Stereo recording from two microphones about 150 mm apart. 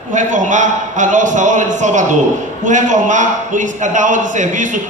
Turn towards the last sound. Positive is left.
turn(degrees=-60)  # may be behind; listen again after turning